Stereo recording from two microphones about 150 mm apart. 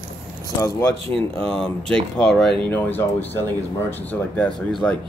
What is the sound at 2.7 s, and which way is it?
Speech, 15° left (ahead or behind).